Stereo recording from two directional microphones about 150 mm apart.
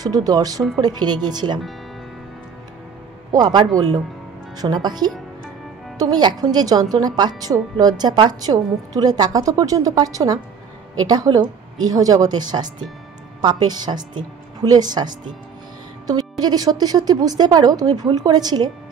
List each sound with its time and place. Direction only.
0.0 s a woman's voice: 25° right (ahead or behind)
3.3 s a woman's voice: 25° right (ahead or behind)